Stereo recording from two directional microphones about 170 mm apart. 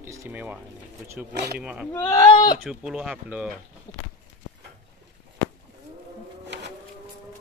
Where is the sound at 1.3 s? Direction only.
70° right (ahead or behind).